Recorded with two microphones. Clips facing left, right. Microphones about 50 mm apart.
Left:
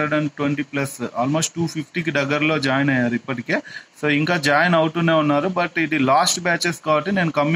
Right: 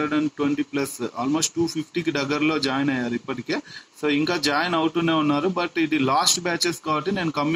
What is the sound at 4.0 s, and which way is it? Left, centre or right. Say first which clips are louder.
Speech: left 2 dB; left.